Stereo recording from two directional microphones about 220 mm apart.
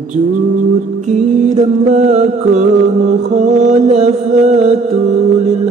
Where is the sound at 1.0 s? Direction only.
35° right (ahead or behind).